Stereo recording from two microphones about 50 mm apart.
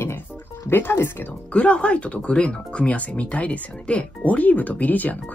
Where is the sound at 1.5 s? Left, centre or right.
Left.